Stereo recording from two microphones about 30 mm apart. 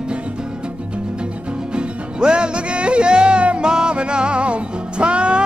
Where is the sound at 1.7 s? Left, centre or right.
Right.